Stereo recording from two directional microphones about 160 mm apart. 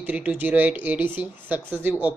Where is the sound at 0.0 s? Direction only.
10° right (ahead or behind).